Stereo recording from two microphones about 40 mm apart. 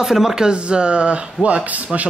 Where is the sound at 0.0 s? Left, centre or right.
Centre.